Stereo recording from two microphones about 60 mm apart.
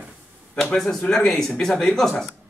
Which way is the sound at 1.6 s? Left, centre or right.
Centre.